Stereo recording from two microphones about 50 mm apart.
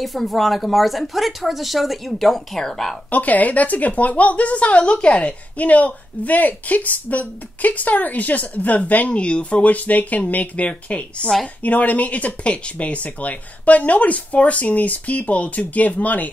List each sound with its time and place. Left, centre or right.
0.0 s speech: centre
3.1 s a woman's voice: left